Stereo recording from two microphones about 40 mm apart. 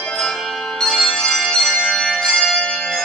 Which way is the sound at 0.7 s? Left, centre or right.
Centre.